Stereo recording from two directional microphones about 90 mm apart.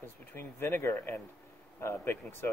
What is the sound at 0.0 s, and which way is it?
Speech, 25° left (ahead or behind).